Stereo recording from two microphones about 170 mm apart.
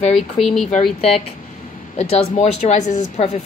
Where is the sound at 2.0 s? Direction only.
40° left (ahead or behind).